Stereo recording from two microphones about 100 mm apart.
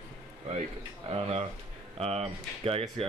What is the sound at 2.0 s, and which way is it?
Speech, 90° right.